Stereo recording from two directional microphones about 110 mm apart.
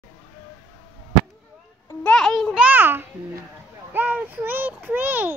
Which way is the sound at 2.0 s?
5° left (ahead or behind).